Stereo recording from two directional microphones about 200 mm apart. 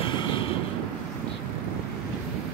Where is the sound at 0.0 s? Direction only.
25° left (ahead or behind).